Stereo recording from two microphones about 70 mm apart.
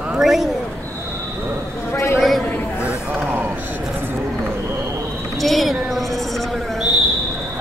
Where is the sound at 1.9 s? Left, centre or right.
Left.